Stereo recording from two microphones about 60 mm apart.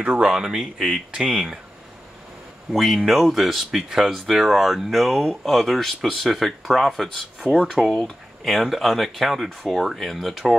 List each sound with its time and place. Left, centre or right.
0.0 s speech: centre
0.7 s speech: centre
1.1 s speech: centre
2.7 s speech: centre
7.4 s speech: centre
7.9 s speech: centre